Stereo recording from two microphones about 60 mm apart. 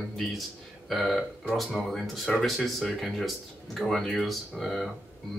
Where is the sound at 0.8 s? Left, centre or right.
Centre.